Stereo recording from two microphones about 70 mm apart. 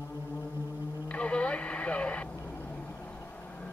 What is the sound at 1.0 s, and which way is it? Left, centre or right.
Radio, centre.